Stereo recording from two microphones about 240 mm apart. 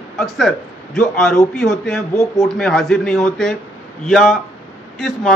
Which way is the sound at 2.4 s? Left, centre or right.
Centre.